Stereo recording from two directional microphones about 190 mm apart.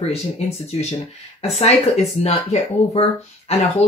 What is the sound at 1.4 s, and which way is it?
Speech, 35° left (ahead or behind).